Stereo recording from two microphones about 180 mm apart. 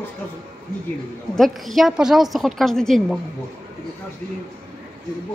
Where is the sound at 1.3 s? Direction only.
Centre (ahead or behind).